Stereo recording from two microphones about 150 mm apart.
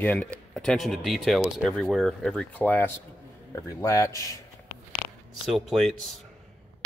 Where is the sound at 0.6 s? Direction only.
Centre (ahead or behind); by 4.4 s 20° left (ahead or behind).